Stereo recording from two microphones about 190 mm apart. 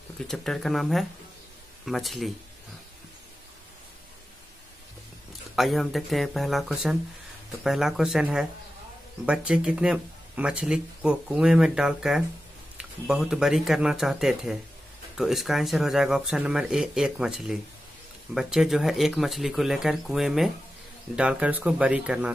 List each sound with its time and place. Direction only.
0.3 s speech: centre (ahead or behind)
5.6 s speech: centre (ahead or behind)